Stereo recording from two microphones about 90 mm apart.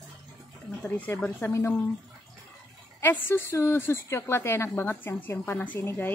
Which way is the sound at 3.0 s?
25° left (ahead or behind).